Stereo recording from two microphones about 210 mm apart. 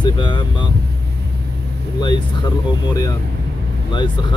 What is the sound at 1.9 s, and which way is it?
Speech, 20° left (ahead or behind).